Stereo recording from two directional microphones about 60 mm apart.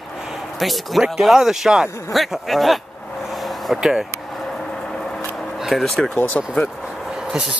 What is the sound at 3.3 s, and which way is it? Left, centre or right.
Vehicle, centre.